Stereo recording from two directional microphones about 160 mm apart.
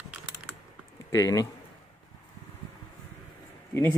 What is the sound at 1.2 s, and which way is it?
Speech, 20° left (ahead or behind).